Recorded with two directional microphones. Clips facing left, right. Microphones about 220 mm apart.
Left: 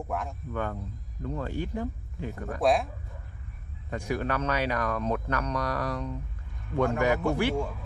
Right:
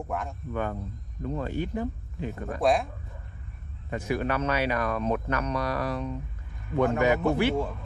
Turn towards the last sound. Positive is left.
turn(degrees=-15)  # may be behind; listen again after turning